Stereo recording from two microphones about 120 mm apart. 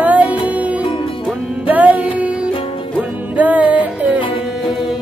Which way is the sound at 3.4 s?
10° right (ahead or behind).